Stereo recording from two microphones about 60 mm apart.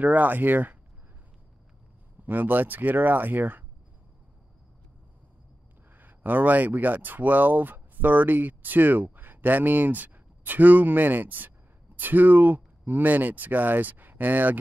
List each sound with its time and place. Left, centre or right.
0.0 s speech: right
2.2 s speech: right
5.9 s speech: right